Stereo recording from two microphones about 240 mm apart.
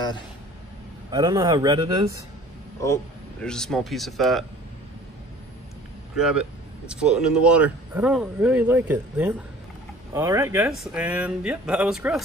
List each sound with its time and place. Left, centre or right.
1.1 s speech: centre
3.4 s speech: centre
6.1 s speech: centre